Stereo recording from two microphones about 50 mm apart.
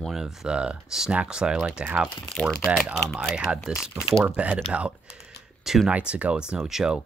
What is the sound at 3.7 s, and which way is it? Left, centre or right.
Speech, centre.